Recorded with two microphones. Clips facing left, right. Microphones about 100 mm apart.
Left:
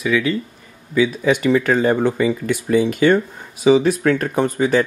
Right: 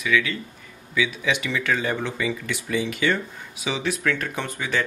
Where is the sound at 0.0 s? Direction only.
35° left (ahead or behind).